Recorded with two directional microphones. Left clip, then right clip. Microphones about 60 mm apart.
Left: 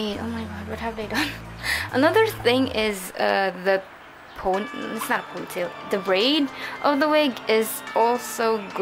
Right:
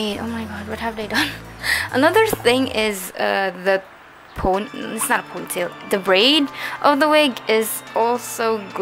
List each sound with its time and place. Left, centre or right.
0.2 s speech: right
4.4 s speech: right
7.9 s speech: centre